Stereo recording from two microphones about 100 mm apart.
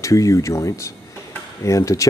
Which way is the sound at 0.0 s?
35° left (ahead or behind).